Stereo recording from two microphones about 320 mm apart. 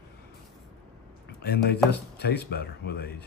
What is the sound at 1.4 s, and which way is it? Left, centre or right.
Speech, left.